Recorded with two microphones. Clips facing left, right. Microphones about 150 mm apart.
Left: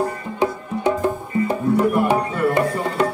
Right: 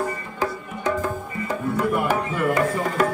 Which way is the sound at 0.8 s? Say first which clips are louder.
Left 4 dB; 30° left (ahead or behind).